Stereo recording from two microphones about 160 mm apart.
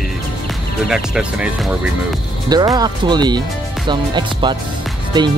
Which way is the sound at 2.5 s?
25° right (ahead or behind).